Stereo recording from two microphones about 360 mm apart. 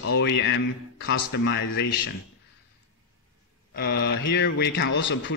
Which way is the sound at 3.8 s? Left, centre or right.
Left.